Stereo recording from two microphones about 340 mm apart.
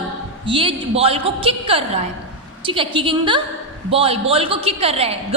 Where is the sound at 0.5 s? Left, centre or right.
Centre.